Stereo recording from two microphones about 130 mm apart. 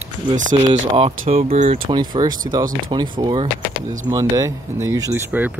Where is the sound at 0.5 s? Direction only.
45° right (ahead or behind).